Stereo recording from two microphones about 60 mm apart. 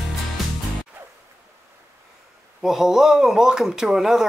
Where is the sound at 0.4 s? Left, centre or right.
Centre.